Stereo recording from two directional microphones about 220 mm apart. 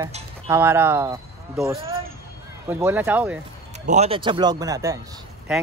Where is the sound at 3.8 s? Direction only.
30° right (ahead or behind).